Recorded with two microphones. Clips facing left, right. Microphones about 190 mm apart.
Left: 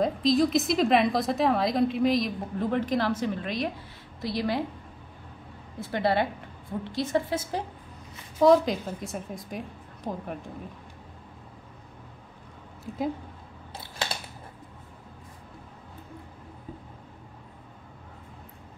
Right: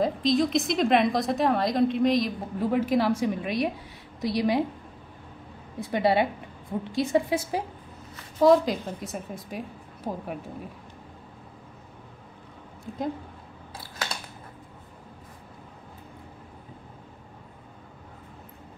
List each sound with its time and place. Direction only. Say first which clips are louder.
0.0 s a woman's voice: even; centre (ahead or behind); by 4.6 s 15° right (ahead or behind)
5.8 s a woman's voice: right 3 dB; 15° right (ahead or behind)
8.4 s a woman's voice: even; centre (ahead or behind)